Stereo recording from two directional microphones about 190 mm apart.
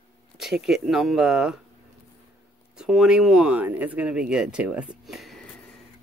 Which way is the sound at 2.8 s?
Centre (ahead or behind).